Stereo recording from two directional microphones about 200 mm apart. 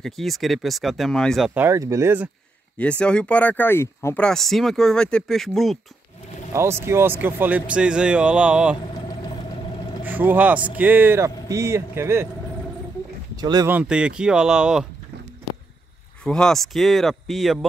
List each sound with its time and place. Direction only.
0.0 s speech: centre (ahead or behind)
2.8 s speech: 5° left (ahead or behind)
6.5 s speech: 15° right (ahead or behind)
10.0 s speech: 10° right (ahead or behind)
13.4 s speech: 20° right (ahead or behind)
13.7 s speech: 5° right (ahead or behind)
16.3 s speech: 5° left (ahead or behind)